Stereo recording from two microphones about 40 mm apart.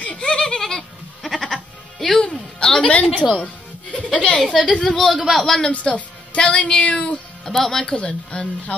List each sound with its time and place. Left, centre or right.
0.0 s goat: left
0.6 s goat: centre
1.3 s music: centre
2.2 s a sound: centre
3.2 s a woman's voice: left
3.4 s music: left
4.6 s speech: centre
4.9 s a man's voice: centre
5.7 s a woman's voice: left
7.4 s speech: centre
7.9 s a woman's voice: left